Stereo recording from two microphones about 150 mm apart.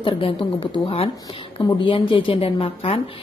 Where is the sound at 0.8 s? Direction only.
40° left (ahead or behind).